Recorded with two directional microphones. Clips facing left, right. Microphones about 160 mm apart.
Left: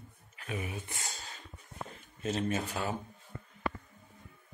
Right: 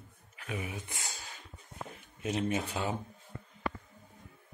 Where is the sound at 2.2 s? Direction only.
15° right (ahead or behind).